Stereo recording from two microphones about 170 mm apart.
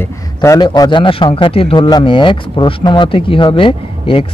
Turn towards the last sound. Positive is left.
turn(degrees=30)  # may be behind; listen again after turning